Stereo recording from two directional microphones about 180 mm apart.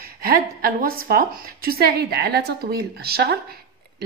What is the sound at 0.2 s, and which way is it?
A woman's voice, 55° right (ahead or behind).